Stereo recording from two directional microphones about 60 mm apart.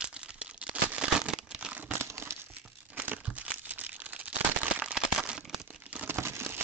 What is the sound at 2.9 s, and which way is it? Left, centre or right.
Crumpling, right.